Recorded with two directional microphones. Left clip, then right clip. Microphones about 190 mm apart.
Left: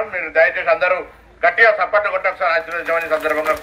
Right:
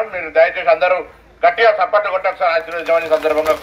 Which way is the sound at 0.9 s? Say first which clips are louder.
Right 2 dB; 40° left (ahead or behind).